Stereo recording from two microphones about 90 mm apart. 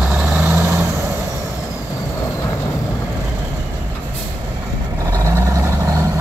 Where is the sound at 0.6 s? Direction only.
25° right (ahead or behind).